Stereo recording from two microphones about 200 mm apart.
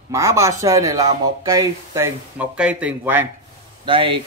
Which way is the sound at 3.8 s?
25° right (ahead or behind).